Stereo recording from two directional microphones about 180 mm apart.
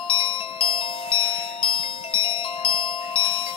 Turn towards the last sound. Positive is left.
turn(degrees=30)  # may be behind; listen again after turning